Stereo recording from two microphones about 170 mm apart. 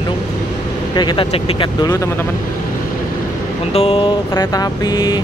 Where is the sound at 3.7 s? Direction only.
35° left (ahead or behind).